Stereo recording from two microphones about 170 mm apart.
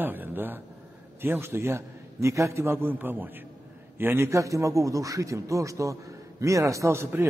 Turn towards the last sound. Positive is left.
turn(degrees=-15)  # may be behind; listen again after turning